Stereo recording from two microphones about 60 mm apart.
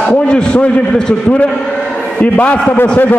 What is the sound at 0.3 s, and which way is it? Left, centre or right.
Speech, centre.